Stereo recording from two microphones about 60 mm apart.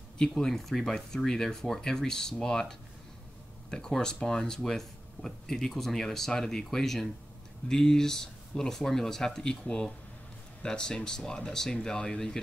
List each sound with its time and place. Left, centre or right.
0.2 s speech: centre
3.7 s speech: centre